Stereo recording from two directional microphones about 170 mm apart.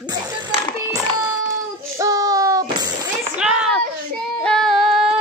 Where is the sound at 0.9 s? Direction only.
20° right (ahead or behind).